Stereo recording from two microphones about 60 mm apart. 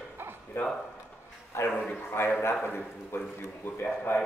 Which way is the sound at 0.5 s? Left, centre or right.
Left.